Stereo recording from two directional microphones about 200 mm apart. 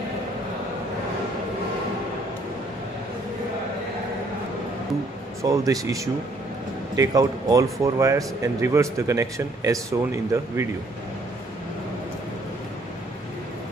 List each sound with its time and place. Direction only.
5.4 s speech: 15° right (ahead or behind)